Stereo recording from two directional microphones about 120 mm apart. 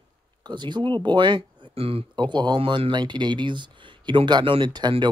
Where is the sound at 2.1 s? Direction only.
40° right (ahead or behind).